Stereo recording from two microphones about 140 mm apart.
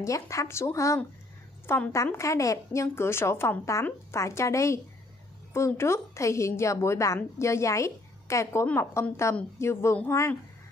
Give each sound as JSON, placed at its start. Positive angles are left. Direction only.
{"t": 0.0, "sound": "a woman's voice", "side_deg": 25}